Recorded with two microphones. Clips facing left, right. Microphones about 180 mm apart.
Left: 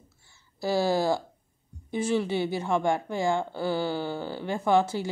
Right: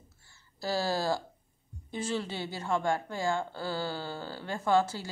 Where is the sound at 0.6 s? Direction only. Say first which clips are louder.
Left 6 dB; 15° left (ahead or behind).